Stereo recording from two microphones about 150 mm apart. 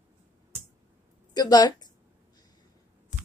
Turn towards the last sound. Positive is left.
turn(degrees=55)  # may be behind; listen again after turning